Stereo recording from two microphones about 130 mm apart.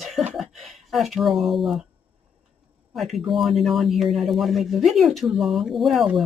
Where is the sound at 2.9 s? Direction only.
Centre (ahead or behind).